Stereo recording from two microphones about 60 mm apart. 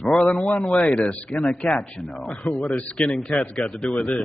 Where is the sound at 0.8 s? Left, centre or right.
Left.